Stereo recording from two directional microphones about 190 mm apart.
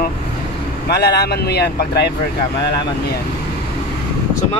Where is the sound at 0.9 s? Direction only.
60° left (ahead or behind).